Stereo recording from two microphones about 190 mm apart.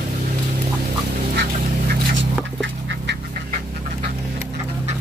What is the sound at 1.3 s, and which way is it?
Duck, 55° right (ahead or behind).